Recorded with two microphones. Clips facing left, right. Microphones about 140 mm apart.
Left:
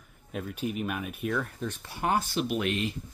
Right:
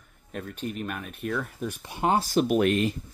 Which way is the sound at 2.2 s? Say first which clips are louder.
Right 7 dB; 40° right (ahead or behind).